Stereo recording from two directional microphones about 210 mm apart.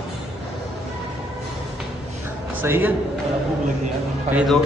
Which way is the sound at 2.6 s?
10° right (ahead or behind).